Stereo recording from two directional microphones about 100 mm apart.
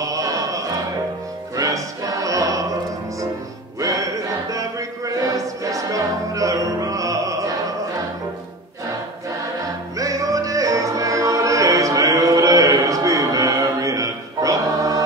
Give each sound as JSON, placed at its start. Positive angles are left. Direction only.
{"t": 0.0, "sound": "music", "side_deg": -35}
{"t": 1.6, "sound": "choir", "side_deg": -35}
{"t": 3.8, "sound": "a sound", "side_deg": -35}
{"t": 9.9, "sound": "music", "side_deg": -35}